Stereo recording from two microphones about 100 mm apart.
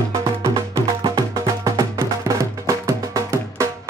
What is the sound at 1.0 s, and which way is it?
Music, 45° right (ahead or behind).